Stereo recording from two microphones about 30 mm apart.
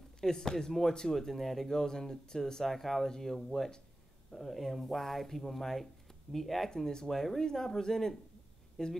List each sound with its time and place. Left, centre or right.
0.2 s speech: centre
1.7 s speech: centre
2.7 s speech: centre